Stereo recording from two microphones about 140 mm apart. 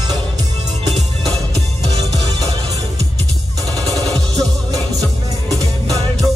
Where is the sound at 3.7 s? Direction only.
25° right (ahead or behind).